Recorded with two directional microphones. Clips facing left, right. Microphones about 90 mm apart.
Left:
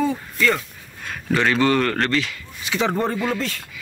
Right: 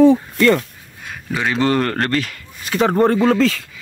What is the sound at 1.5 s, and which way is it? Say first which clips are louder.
Speech: right 1 dB; 35° right (ahead or behind).